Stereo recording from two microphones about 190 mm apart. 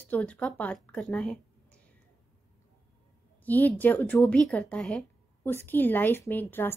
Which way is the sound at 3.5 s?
10° left (ahead or behind).